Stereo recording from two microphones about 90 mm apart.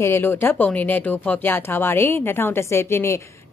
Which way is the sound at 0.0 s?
25° left (ahead or behind).